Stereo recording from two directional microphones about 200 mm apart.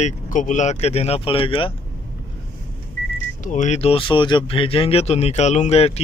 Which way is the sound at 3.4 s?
40° left (ahead or behind).